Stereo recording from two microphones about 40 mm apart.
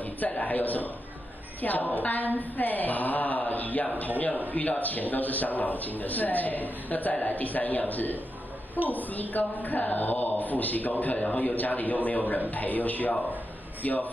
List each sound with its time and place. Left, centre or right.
0.0 s a man's voice: left
13.8 s a man's voice: left